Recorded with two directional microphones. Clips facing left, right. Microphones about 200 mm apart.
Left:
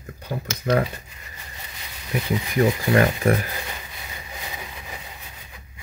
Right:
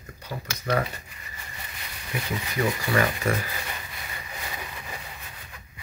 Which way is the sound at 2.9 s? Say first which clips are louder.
Left 5 dB; 50° left (ahead or behind).